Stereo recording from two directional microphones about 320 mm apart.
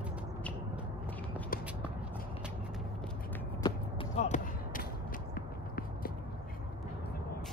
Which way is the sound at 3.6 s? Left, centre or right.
Left.